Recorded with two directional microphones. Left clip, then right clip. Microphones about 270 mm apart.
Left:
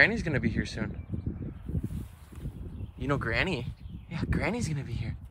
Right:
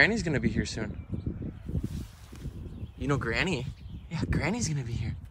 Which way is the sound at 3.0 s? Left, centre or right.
Centre.